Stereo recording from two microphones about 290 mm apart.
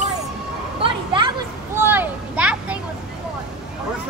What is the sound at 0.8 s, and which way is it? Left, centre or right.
Speech, centre.